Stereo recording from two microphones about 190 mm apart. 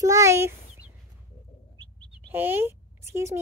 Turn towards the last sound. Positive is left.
turn(degrees=-15)  # may be behind; listen again after turning